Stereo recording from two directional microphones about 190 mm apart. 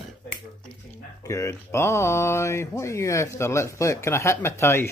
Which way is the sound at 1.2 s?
15° left (ahead or behind).